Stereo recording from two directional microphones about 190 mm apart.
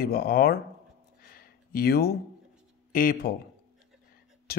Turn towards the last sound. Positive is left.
turn(degrees=55)  # may be behind; listen again after turning